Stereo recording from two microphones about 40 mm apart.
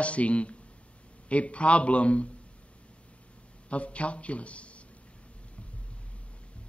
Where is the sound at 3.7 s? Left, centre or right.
Left.